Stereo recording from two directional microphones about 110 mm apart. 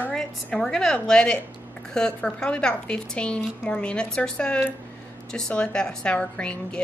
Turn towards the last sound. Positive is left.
turn(degrees=10)  # may be behind; listen again after turning